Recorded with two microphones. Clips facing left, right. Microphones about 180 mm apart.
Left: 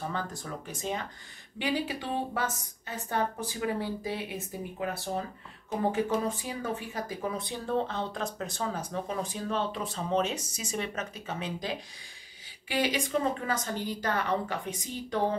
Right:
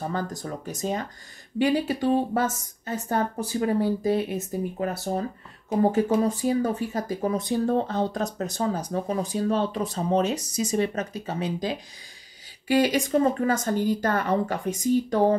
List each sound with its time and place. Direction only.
0.0 s a woman's voice: 40° right (ahead or behind)